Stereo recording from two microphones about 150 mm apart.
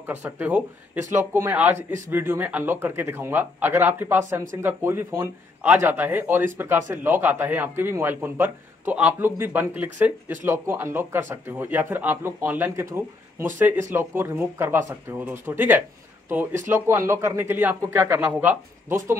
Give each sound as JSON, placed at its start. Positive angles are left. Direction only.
{"t": 0.0, "sound": "speech", "side_deg": -15}